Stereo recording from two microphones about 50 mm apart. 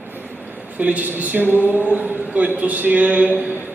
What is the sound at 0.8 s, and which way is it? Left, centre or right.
A woman's voice, right.